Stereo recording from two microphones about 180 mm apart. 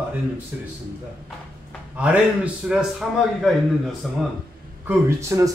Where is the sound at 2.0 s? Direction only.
5° right (ahead or behind).